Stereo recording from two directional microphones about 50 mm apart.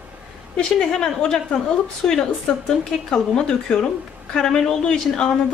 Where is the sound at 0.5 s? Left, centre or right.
Centre.